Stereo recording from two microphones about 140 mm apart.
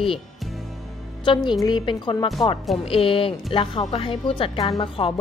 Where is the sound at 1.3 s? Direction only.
30° left (ahead or behind).